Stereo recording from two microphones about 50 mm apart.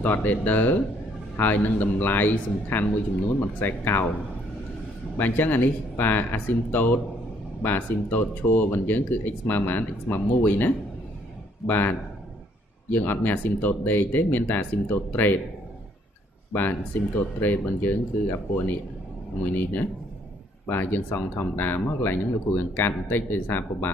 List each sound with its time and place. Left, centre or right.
0.0 s speech: left
5.2 s speech: left
17.4 s speech: left